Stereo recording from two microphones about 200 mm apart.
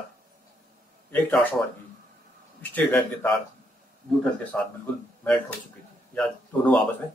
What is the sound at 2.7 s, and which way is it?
Speech, 10° left (ahead or behind).